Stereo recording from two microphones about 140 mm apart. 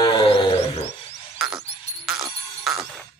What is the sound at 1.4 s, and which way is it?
Frog, 5° right (ahead or behind).